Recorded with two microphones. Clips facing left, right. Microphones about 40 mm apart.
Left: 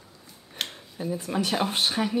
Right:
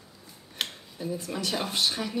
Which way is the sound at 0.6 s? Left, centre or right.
Centre.